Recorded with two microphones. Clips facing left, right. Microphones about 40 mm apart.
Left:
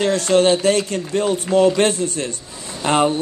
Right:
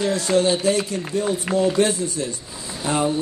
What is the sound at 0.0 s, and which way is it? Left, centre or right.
Speech, left.